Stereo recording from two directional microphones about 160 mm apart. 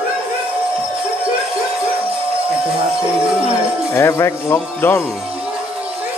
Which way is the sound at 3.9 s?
15° left (ahead or behind).